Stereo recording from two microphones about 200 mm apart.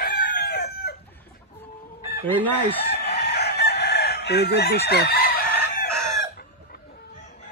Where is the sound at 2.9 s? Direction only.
55° left (ahead or behind).